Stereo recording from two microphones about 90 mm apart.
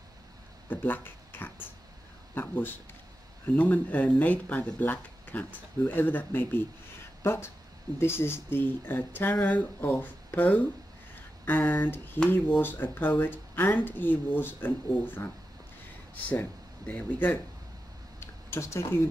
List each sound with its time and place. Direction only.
0.7 s speech: 20° left (ahead or behind)
16.3 s speech: 20° left (ahead or behind)
18.2 s speech: 30° left (ahead or behind)